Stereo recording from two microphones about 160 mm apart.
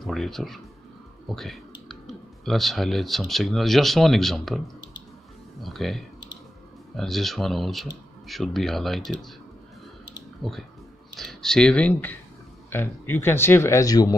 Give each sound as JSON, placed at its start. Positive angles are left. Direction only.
{"t": 0.0, "sound": "speech", "side_deg": 0}
{"t": 10.4, "sound": "speech", "side_deg": 0}